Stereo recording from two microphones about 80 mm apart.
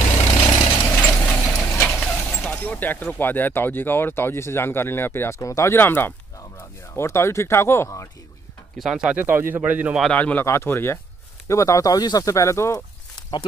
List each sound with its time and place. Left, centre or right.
0.4 s vehicle: left
0.9 s vehicle: centre
2.2 s speech: left
5.4 s speech: left
8.7 s speech: centre
9.1 s speech: right
10.1 s speech: centre
10.4 s speech: left
11.4 s speech: left